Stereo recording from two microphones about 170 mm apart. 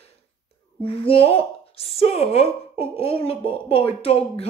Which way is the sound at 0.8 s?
35° left (ahead or behind).